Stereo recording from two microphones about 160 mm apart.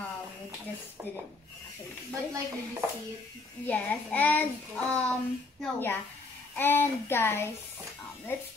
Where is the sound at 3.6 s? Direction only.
10° left (ahead or behind).